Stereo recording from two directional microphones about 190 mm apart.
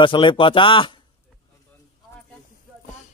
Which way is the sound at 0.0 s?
25° left (ahead or behind).